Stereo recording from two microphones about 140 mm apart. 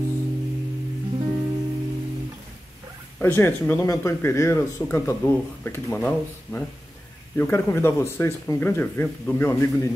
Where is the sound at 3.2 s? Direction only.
15° left (ahead or behind).